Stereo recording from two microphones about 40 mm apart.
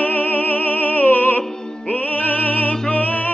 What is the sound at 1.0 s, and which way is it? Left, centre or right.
Music, left.